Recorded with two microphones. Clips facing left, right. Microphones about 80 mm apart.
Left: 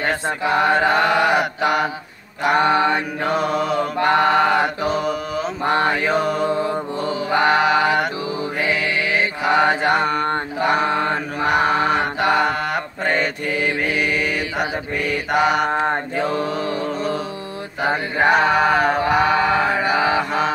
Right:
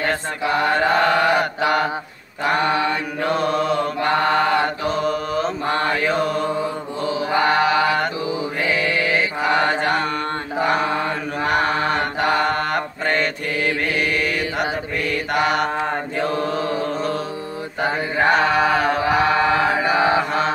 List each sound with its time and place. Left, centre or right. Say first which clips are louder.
0.0 s mantra: left 1 dB; centre
2.7 s mantra: left 3 dB; left
3.3 s mantra: right 1 dB; centre
11.4 s mantra: left 2 dB; centre